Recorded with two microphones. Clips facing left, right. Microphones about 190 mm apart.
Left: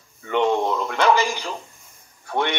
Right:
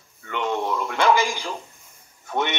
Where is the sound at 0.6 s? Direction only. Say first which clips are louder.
Left 1 dB; 10° right (ahead or behind).